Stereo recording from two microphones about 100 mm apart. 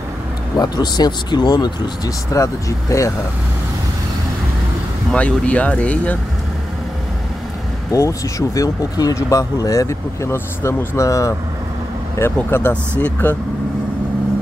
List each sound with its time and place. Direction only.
0.6 s speech: 45° left (ahead or behind)
5.1 s speech: 10° left (ahead or behind)
7.9 s speech: 35° left (ahead or behind)